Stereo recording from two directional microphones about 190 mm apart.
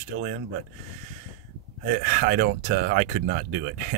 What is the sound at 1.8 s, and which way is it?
Speech, 50° right (ahead or behind).